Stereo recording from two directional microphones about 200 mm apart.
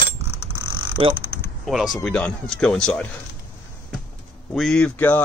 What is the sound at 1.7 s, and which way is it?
Speech, centre (ahead or behind).